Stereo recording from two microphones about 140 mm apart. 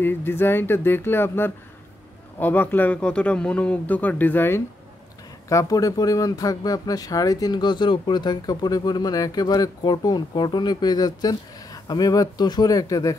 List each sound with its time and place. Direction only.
0.0 s a man's voice: 15° left (ahead or behind)